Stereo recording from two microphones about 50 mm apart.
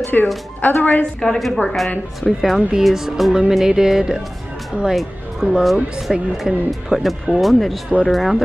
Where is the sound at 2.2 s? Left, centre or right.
Left.